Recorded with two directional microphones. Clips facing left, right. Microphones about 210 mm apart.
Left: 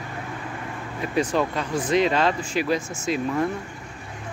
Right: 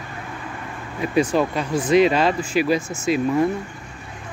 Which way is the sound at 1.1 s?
10° right (ahead or behind).